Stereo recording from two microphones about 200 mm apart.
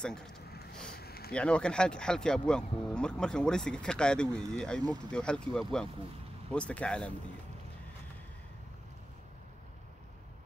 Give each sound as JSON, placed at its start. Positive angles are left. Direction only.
{"t": 0.0, "sound": "speech", "side_deg": 5}
{"t": 0.9, "sound": "a sound", "side_deg": 50}
{"t": 1.3, "sound": "speech", "side_deg": 5}